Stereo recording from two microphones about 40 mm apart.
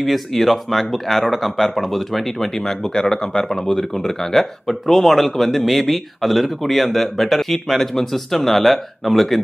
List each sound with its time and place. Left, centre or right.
0.0 s speech: centre